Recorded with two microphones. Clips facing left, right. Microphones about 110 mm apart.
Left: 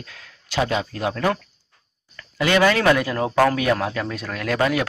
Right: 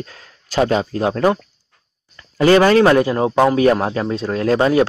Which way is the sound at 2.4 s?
35° right (ahead or behind).